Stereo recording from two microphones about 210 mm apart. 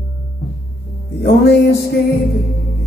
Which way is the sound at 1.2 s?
50° left (ahead or behind).